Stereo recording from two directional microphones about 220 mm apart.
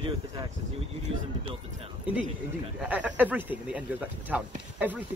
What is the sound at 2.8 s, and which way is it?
Speech, 5° right (ahead or behind).